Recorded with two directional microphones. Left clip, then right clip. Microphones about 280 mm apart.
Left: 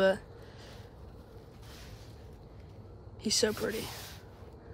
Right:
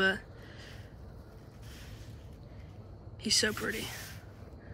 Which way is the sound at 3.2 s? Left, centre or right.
Centre.